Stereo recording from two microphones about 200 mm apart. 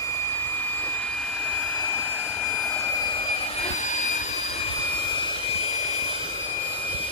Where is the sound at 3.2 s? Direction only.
25° left (ahead or behind).